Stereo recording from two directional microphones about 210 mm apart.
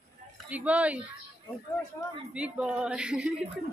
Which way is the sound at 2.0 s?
15° left (ahead or behind).